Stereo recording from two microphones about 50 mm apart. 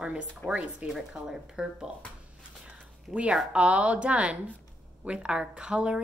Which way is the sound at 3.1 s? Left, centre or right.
Right.